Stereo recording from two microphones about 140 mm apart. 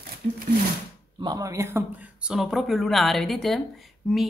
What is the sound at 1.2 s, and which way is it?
Speech, 25° right (ahead or behind).